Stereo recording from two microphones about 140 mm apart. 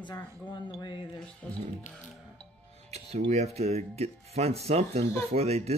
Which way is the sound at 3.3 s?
50° right (ahead or behind).